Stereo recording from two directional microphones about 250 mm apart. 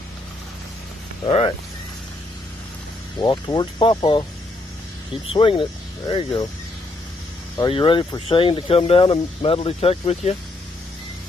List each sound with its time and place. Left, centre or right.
1.2 s speech: left
3.2 s speech: centre
5.3 s speech: left
7.5 s speech: centre